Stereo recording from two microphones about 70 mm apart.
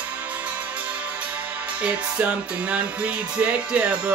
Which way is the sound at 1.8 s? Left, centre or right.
Centre.